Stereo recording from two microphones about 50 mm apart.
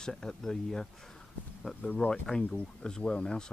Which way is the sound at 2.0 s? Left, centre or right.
Left.